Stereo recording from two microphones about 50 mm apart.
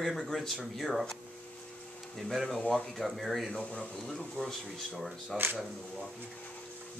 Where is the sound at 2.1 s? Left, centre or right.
Centre.